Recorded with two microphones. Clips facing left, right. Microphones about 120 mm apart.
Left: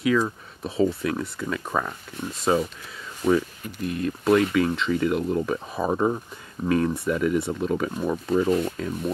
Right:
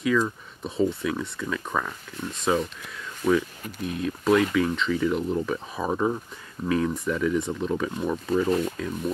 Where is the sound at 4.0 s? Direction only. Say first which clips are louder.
Left 1 dB; centre (ahead or behind).